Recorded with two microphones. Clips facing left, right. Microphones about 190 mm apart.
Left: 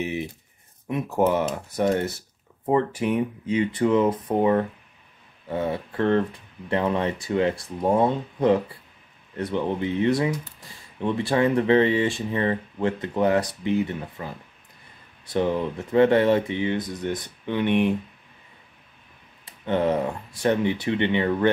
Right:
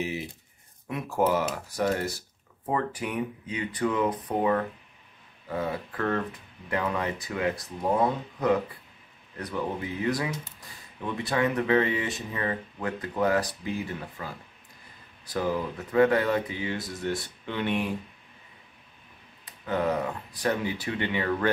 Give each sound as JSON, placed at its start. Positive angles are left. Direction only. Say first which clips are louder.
{"t": 0.0, "sound": "speech", "louder": "left 4 dB", "side_deg": 20}
{"t": 19.4, "sound": "speech", "louder": "left 5 dB", "side_deg": 30}